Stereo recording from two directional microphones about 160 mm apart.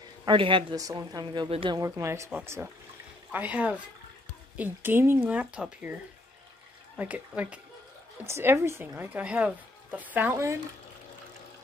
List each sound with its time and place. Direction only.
0.2 s speech: 30° right (ahead or behind)
0.7 s a woman's voice: 20° right (ahead or behind)
1.8 s a woman's voice: 15° right (ahead or behind)
7.0 s a woman's voice: 10° right (ahead or behind)